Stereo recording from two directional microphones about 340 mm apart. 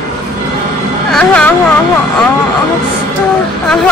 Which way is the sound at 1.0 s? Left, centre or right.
Centre.